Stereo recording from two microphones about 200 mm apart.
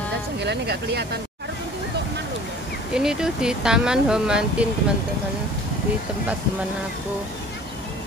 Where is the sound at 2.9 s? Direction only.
5° right (ahead or behind).